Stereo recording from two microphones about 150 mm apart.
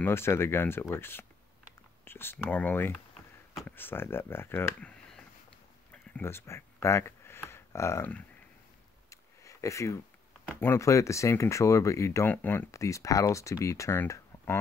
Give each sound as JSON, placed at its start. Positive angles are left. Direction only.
{"t": 0.0, "sound": "speech", "side_deg": 15}
{"t": 6.1, "sound": "speech", "side_deg": 15}
{"t": 9.1, "sound": "a sound", "side_deg": 20}
{"t": 10.6, "sound": "speech", "side_deg": 15}